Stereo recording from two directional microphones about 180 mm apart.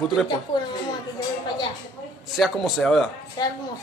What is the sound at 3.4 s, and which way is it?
Speech, 20° left (ahead or behind).